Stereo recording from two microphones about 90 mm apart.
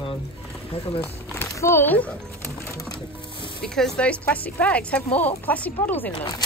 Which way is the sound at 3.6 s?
5° left (ahead or behind).